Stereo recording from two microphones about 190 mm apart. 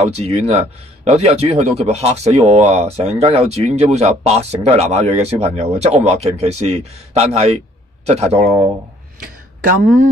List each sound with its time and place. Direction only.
0.0 s a man's voice: 35° right (ahead or behind)
9.8 s speech: 45° right (ahead or behind)